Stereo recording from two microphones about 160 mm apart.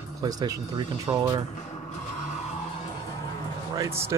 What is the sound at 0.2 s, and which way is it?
Speech, 25° right (ahead or behind).